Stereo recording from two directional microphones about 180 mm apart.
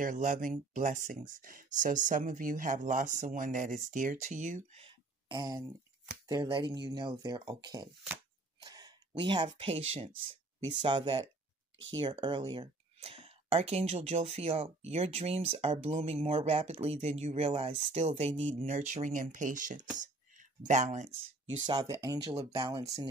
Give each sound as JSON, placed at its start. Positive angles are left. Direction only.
{"t": 0.0, "sound": "speech", "side_deg": -45}
{"t": 8.1, "sound": "shuffling cards", "side_deg": -20}
{"t": 9.6, "sound": "speech", "side_deg": -30}
{"t": 20.0, "sound": "a sound", "side_deg": -45}
{"t": 21.6, "sound": "speech", "side_deg": -20}